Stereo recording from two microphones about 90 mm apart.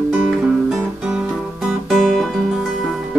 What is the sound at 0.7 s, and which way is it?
Music, 10° right (ahead or behind).